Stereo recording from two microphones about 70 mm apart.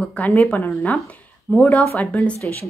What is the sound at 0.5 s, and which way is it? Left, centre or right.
A woman's voice, left.